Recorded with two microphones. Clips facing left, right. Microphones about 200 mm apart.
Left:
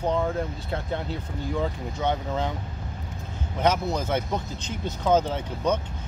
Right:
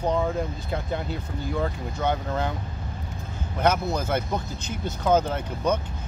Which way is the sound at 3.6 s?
5° right (ahead or behind).